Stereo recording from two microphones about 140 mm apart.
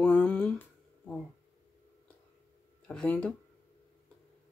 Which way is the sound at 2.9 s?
5° left (ahead or behind).